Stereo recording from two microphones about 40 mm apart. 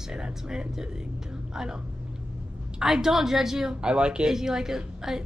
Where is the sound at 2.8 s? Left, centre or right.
Centre.